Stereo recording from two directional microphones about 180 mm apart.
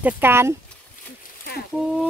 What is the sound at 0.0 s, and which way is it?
Speech, 10° right (ahead or behind).